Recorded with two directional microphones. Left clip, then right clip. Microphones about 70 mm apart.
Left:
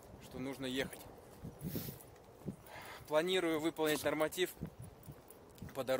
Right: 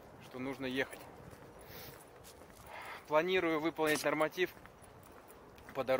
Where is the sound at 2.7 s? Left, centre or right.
Left.